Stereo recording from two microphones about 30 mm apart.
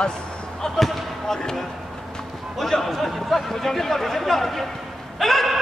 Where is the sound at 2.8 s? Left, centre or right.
Centre.